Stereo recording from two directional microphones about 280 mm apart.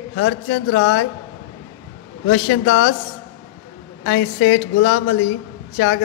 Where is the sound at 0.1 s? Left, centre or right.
Left.